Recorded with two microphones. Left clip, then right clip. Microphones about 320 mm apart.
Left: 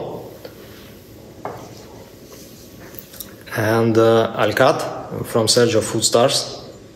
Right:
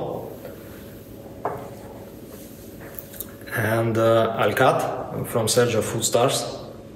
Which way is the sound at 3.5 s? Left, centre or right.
Left.